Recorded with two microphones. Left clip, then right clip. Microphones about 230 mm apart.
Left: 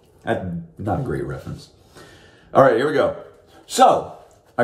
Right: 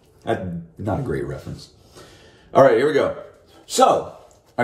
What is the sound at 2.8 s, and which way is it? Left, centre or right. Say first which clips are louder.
A man's voice: even; centre.